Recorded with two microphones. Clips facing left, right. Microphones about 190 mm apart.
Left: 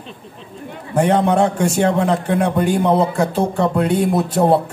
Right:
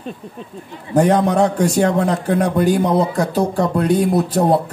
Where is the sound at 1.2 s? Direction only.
40° right (ahead or behind).